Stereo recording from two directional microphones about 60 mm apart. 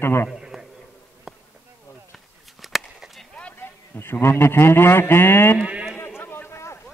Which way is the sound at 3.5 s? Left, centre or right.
Left.